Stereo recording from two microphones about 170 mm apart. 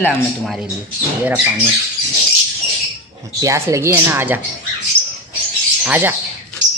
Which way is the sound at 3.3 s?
20° right (ahead or behind).